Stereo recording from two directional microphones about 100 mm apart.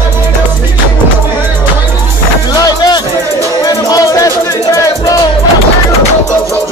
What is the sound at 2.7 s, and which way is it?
Music, 45° left (ahead or behind).